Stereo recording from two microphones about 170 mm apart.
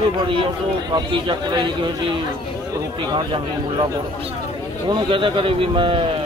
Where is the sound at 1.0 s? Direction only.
30° right (ahead or behind).